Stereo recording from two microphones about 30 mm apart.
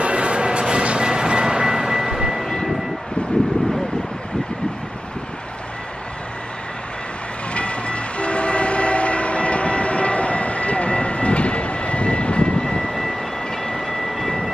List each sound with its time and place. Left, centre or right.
0.0 s vehicle: right; by 2.4 s centre
7.5 s train: left
12.8 s vehicle: centre
13.7 s vehicle: centre